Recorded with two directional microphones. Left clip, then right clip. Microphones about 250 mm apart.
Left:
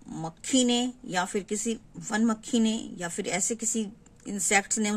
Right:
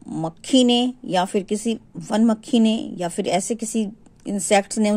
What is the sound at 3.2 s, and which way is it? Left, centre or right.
Speech, right.